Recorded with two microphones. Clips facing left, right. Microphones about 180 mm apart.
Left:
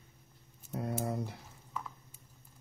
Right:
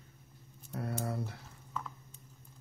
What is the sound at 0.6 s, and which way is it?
Typing, 20° left (ahead or behind).